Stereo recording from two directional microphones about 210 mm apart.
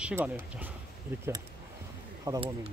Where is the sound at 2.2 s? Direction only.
15° right (ahead or behind).